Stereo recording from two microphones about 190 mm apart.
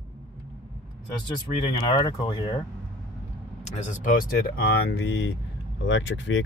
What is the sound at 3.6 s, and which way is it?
Speech, 45° left (ahead or behind).